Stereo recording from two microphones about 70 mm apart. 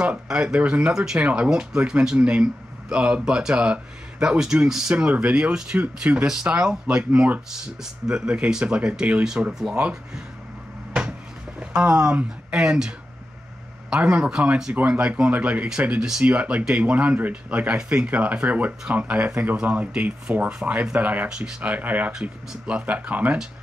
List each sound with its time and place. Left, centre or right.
0.0 s speech: centre
4.9 s speech: right
7.1 s speech: right
7.5 s speech: centre
11.6 s speech: centre